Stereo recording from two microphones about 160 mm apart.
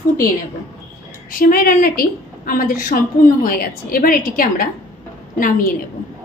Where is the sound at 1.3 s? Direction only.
60° left (ahead or behind).